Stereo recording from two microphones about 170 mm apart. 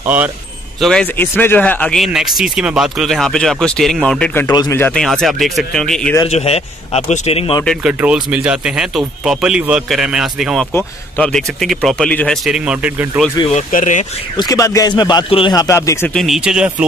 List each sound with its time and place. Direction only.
0.0 s speech: 10° right (ahead or behind)
0.7 s speech: centre (ahead or behind)
1.1 s speech: 10° left (ahead or behind)
4.5 s speech: 20° left (ahead or behind)
5.0 s speech: centre (ahead or behind)
6.2 s speech: 35° left (ahead or behind)
7.6 s speech: 5° right (ahead or behind)
10.7 s speech: 10° left (ahead or behind)
12.4 s speech: 5° right (ahead or behind)
13.5 s speech: 45° left (ahead or behind)
14.3 s speech: 25° left (ahead or behind)
16.1 s speech: centre (ahead or behind)